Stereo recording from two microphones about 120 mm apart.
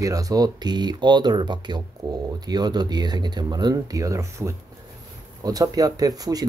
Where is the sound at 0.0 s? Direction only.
30° right (ahead or behind).